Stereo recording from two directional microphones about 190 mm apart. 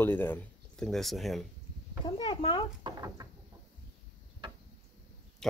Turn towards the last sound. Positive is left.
turn(degrees=5)  # may be behind; listen again after turning